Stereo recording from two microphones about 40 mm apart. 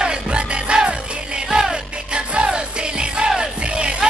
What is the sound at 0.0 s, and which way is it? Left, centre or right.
Music, right.